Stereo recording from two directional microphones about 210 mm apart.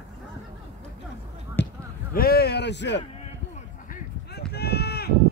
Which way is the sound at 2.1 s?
45° left (ahead or behind).